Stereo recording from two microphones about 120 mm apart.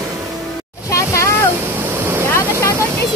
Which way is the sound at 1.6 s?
15° right (ahead or behind).